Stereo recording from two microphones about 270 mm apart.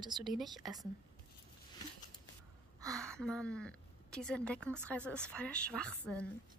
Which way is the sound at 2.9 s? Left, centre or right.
Centre.